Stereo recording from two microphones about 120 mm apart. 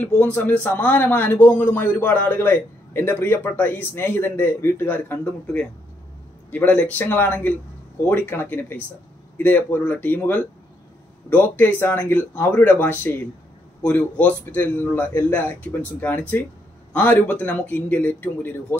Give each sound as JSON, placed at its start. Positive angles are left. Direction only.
{"t": 0.0, "sound": "speech", "side_deg": 15}